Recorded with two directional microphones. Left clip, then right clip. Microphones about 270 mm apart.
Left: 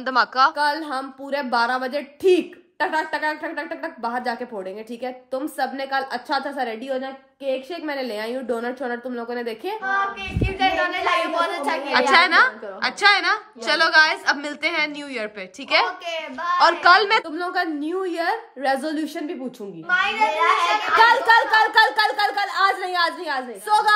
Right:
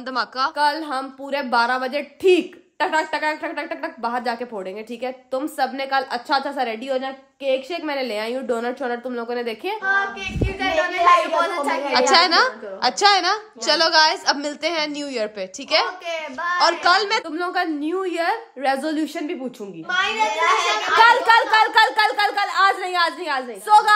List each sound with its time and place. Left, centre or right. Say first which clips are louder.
0.0 s a woman's voice: left 5 dB; centre
19.9 s a child's voice: left 1 dB; right
21.0 s a woman's voice: right 2 dB; centre